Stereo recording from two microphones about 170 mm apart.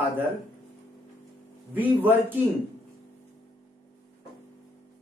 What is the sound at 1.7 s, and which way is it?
Speech, 10° right (ahead or behind).